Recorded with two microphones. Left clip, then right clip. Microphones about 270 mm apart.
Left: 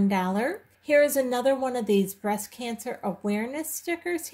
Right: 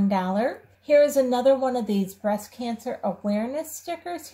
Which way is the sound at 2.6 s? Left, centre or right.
Left.